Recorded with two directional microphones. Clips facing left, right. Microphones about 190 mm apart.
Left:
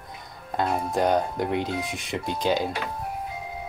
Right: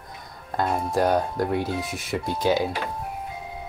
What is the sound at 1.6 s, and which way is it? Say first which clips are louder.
Speech: right 1 dB; 20° left (ahead or behind).